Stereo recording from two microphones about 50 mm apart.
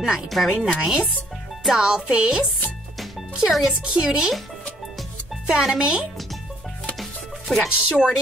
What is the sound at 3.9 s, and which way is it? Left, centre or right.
Speech, centre.